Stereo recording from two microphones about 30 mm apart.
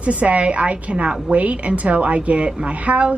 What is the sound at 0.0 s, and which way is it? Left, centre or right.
A woman's voice, right.